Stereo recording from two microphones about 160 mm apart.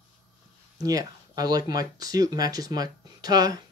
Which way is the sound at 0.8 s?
25° right (ahead or behind).